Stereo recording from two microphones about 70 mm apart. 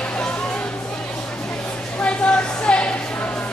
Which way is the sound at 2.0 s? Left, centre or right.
Centre.